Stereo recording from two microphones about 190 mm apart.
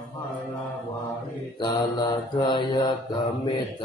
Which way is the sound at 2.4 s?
25° left (ahead or behind).